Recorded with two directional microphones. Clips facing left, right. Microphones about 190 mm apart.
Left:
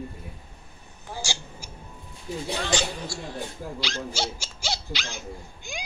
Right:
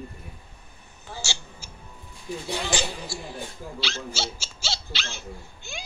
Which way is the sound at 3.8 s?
15° left (ahead or behind).